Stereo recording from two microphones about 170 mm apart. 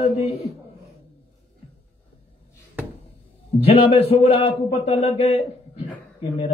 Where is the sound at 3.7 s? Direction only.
35° left (ahead or behind).